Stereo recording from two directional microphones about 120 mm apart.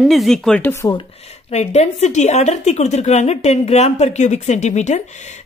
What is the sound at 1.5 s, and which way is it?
A woman's voice, 70° left (ahead or behind).